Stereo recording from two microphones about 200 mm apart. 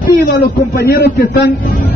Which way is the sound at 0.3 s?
50° left (ahead or behind).